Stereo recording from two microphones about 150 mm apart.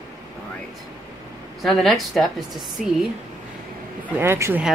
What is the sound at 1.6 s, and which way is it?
A woman's voice, centre (ahead or behind).